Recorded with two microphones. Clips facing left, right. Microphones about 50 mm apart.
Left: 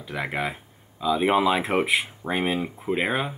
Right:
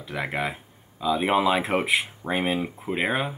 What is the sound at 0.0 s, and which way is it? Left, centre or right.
Speech, centre.